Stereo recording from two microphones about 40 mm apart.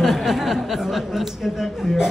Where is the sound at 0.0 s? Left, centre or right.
Centre.